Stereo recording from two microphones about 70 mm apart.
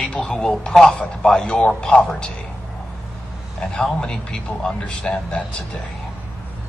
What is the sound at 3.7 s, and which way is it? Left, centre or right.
A man's voice, centre.